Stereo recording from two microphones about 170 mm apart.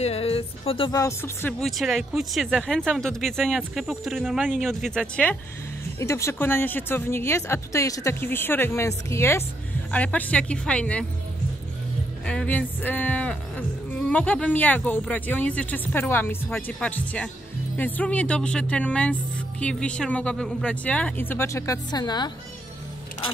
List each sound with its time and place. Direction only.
0.0 s speech: 35° left (ahead or behind)
0.9 s speech: 15° left (ahead or behind)
1.6 s speech: centre (ahead or behind)
12.3 s speech: 10° left (ahead or behind); by 22.3 s 25° left (ahead or behind)